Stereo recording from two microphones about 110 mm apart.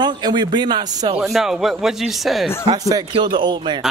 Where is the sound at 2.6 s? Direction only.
35° right (ahead or behind).